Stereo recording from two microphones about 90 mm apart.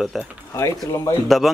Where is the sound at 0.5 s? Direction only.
35° left (ahead or behind).